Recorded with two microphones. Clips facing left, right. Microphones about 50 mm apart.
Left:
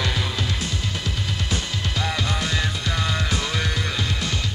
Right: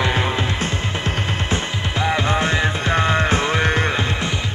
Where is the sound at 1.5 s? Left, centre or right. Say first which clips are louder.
Right 4 dB; right.